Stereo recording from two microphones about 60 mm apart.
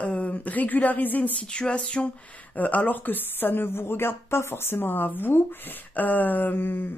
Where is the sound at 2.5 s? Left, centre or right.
Left.